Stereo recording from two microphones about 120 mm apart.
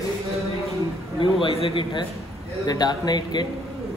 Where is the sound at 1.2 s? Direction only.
50° left (ahead or behind).